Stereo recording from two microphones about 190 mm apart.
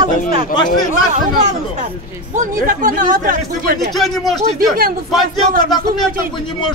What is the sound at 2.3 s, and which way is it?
A man's voice, 45° right (ahead or behind).